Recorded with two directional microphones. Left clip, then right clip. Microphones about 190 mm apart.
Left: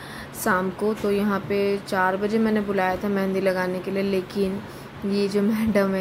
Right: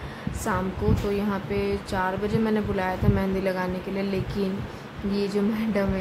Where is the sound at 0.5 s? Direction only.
20° left (ahead or behind).